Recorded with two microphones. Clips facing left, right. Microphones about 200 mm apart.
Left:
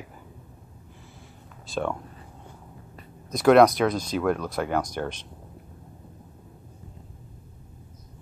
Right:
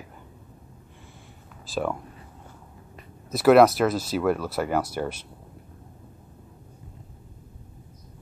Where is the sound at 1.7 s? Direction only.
5° right (ahead or behind).